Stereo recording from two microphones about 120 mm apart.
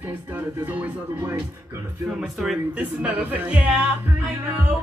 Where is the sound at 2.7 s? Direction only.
15° right (ahead or behind).